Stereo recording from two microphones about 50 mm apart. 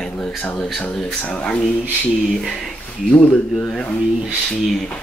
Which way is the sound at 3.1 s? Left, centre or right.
Left.